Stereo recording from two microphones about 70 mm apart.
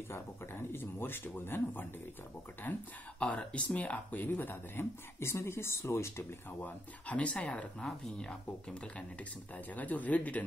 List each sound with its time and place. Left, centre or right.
0.1 s speech: left
6.6 s speech: centre